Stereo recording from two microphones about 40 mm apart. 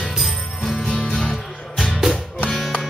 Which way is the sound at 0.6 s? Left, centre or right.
Centre.